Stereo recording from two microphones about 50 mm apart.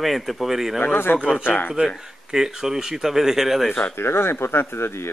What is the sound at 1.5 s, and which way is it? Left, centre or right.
Speech, left.